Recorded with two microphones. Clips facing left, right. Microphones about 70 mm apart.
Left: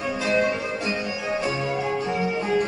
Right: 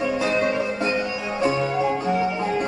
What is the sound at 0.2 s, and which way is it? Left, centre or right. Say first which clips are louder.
Music: left 3 dB; right.